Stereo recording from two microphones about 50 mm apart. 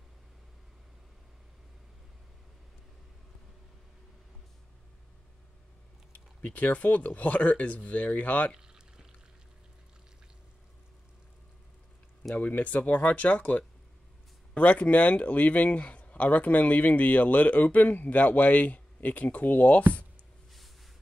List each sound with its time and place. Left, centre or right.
6.1 s speech: left
8.5 s pour: centre
12.4 s speech: left